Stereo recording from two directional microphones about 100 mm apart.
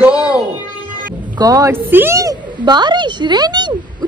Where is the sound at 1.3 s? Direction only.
40° right (ahead or behind).